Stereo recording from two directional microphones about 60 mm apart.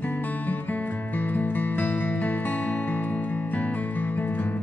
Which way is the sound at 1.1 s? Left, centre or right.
Left.